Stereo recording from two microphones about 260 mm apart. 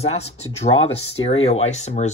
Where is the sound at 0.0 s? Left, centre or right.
Left.